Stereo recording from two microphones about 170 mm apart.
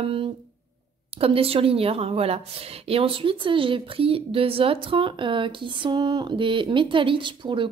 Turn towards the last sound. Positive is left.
turn(degrees=-30)  # may be behind; listen again after turning